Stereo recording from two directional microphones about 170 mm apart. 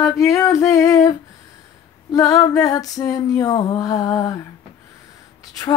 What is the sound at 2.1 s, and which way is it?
Female singing, 20° left (ahead or behind).